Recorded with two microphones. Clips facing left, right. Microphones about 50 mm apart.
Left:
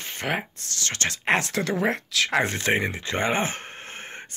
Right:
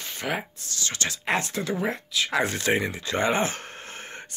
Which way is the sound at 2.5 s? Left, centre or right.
Left.